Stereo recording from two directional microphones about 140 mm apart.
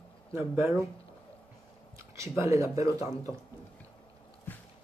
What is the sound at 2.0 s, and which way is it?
Speech, 20° right (ahead or behind).